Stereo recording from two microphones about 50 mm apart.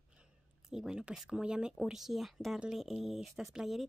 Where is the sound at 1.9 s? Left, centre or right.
Centre.